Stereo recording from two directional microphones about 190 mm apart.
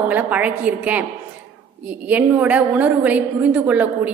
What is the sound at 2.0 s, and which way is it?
A woman's voice, 10° right (ahead or behind).